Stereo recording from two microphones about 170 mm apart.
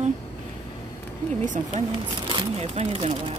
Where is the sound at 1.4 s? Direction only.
50° right (ahead or behind).